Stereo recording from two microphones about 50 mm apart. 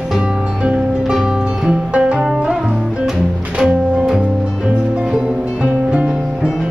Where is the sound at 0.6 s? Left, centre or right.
Centre.